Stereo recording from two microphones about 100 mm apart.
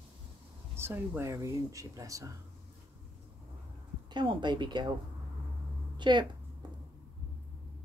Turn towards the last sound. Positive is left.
turn(degrees=-50)  # may be behind; listen again after turning